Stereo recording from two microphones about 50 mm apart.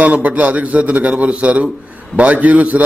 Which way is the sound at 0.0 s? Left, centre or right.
Right.